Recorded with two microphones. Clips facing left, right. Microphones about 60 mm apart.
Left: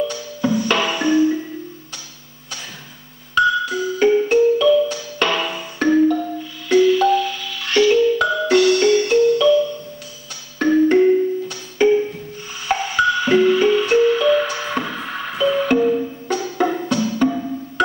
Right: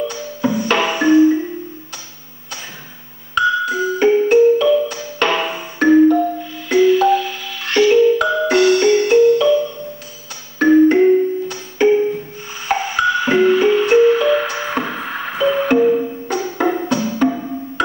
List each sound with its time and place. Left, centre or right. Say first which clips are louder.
0.1 s music: right 1 dB; centre
3.3 s music: right 1 dB; centre
5.4 s marimba: right 3 dB; centre
6.7 s music: right 2 dB; centre